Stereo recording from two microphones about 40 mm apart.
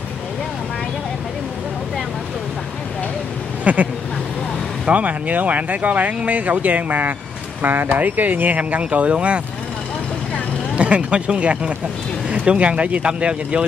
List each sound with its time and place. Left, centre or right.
3.6 s duck: right
4.8 s speech: right
7.6 s speech: right
10.8 s speech: right